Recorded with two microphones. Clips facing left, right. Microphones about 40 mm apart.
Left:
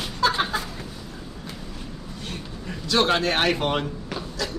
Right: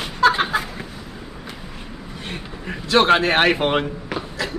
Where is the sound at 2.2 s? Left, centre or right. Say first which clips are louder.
Right 4 dB; right.